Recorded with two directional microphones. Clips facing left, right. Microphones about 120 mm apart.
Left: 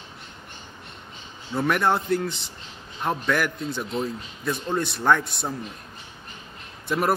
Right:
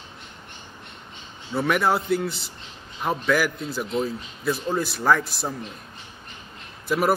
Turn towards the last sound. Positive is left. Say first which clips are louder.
# right 2 dB
turn(degrees=-5)  # may be behind; listen again after turning